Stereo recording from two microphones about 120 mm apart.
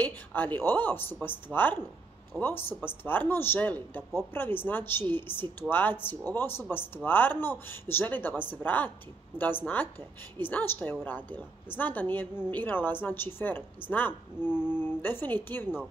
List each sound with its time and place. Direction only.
0.0 s a man's voice: 15° left (ahead or behind)